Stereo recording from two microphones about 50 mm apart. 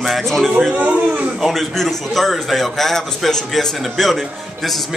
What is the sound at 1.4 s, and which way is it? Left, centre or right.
A man's voice, centre.